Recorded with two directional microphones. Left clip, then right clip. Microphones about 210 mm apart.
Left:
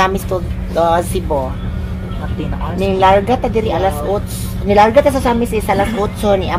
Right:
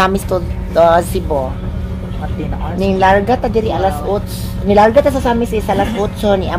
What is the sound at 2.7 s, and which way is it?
Speech, 15° right (ahead or behind).